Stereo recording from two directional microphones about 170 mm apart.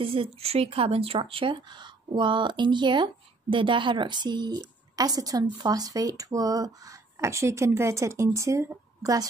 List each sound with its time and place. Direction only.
0.0 s speech: 35° right (ahead or behind); by 9.2 s 20° right (ahead or behind)